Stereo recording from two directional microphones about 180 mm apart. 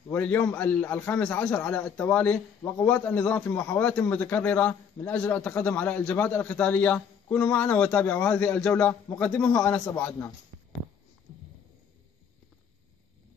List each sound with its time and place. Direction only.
0.1 s a man's voice: 10° left (ahead or behind)